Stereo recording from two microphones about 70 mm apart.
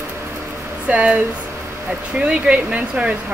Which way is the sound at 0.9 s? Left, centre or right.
Right.